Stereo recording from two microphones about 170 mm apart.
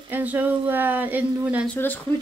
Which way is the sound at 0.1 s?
10° right (ahead or behind).